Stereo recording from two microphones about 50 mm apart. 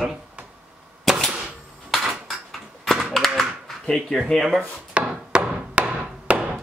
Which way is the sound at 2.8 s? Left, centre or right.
Centre.